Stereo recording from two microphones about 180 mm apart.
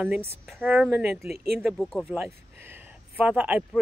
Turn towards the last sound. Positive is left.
turn(degrees=-5)  # may be behind; listen again after turning